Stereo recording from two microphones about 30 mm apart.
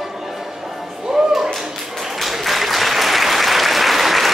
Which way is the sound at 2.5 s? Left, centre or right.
Centre.